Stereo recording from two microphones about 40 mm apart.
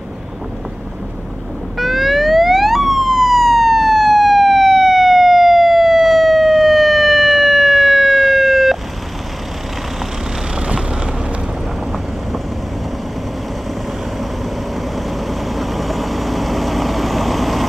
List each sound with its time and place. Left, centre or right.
1.8 s emergency vehicle: centre
10.5 s vehicle: right
15.0 s vehicle: centre